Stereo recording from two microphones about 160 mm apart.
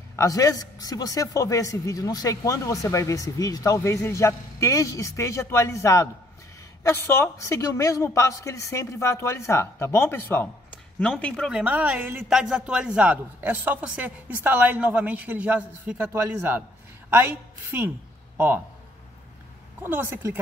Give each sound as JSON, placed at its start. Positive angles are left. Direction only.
{"t": 0.1, "sound": "a man's voice", "side_deg": 20}
{"t": 11.6, "sound": "a man's voice", "side_deg": -10}
{"t": 19.8, "sound": "a man's voice", "side_deg": -10}